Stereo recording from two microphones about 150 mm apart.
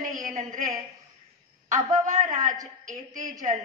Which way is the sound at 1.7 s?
55° right (ahead or behind).